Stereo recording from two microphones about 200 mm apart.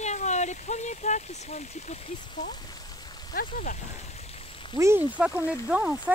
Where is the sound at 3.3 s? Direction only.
45° left (ahead or behind).